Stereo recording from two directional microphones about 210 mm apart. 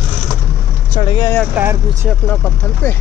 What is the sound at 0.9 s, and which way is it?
Speech, 25° left (ahead or behind).